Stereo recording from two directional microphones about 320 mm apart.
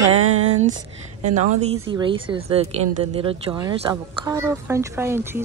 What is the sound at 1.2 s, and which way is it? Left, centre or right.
A woman's voice, right.